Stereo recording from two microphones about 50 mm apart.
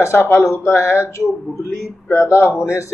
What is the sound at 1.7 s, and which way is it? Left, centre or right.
Speech, left.